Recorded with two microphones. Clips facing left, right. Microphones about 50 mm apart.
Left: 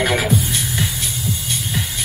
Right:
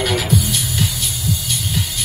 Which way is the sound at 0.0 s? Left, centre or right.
Left.